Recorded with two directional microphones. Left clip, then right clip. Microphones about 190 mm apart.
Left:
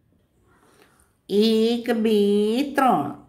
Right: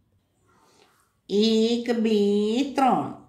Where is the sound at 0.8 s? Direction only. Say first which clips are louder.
Left 3 dB; 20° left (ahead or behind).